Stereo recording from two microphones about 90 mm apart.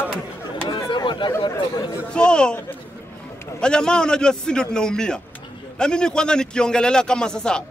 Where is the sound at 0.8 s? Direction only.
60° left (ahead or behind).